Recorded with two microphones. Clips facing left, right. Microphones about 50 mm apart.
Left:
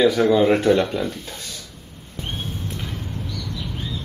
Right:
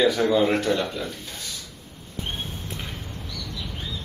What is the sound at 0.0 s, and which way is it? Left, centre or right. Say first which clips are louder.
Speech: left 4 dB; centre.